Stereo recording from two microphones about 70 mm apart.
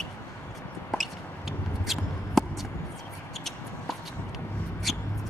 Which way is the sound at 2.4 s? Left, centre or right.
Centre.